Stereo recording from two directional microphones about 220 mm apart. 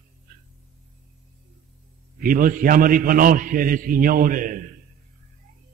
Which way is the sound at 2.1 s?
40° right (ahead or behind).